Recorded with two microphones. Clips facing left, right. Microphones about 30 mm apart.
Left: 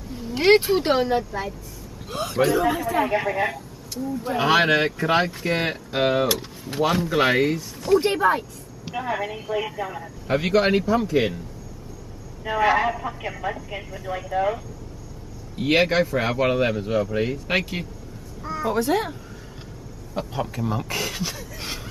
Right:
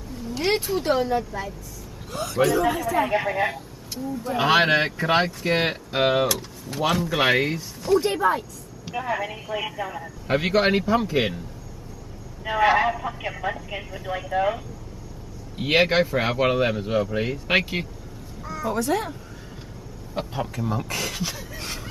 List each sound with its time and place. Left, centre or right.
0.1 s vehicle: centre
0.4 s a man's voice: left
2.5 s a man's voice: centre
6.2 s speech: left
7.1 s a man's voice: centre
8.0 s speech: left
8.9 s speech: centre
10.2 s a man's voice: centre
12.4 s a man's voice: centre
18.7 s speech: centre
20.3 s speech: centre